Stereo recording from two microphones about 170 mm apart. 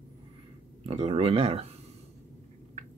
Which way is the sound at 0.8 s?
35° right (ahead or behind).